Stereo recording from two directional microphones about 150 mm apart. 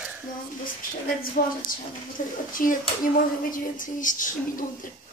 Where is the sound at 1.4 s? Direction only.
70° left (ahead or behind).